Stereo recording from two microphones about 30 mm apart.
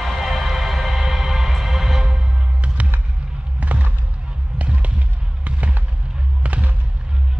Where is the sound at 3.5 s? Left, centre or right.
Right.